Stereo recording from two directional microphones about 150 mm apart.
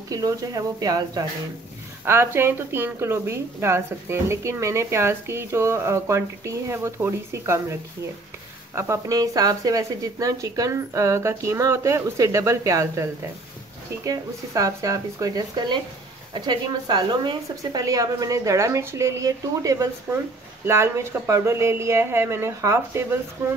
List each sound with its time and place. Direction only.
0.1 s speech: 25° right (ahead or behind)
2.0 s a woman's voice: 15° right (ahead or behind)
8.7 s a woman's voice: 20° right (ahead or behind)